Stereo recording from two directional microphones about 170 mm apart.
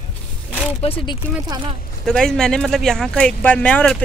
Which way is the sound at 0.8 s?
35° left (ahead or behind).